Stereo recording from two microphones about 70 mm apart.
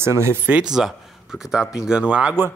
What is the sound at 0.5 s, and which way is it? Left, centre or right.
Speech, right.